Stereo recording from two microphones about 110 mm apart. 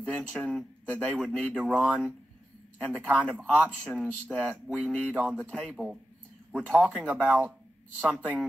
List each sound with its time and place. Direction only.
0.0 s speech: 10° left (ahead or behind)
7.1 s speech: 15° right (ahead or behind)
8.0 s speech: 10° left (ahead or behind)